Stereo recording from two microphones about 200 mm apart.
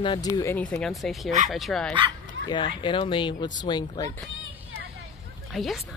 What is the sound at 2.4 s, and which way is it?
Speech, 25° left (ahead or behind).